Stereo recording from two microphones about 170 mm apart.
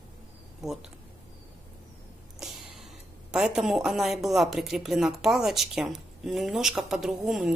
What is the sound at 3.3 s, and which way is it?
A woman's voice, 5° right (ahead or behind).